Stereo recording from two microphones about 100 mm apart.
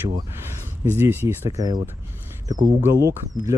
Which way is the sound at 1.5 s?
40° right (ahead or behind).